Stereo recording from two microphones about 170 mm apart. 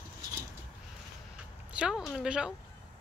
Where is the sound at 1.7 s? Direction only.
5° right (ahead or behind).